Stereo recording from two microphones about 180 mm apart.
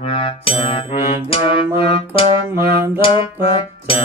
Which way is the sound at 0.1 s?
30° left (ahead or behind).